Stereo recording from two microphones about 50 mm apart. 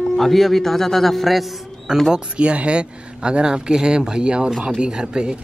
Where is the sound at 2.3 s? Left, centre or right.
Right.